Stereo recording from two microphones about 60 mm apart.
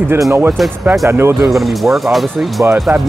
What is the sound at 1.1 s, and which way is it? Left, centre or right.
Speech, right.